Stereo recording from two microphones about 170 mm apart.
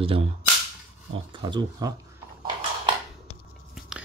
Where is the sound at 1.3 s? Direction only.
25° right (ahead or behind).